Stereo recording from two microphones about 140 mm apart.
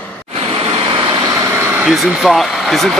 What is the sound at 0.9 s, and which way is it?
Vehicle, 30° right (ahead or behind).